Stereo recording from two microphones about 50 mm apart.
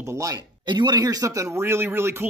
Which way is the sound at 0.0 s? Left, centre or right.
Right.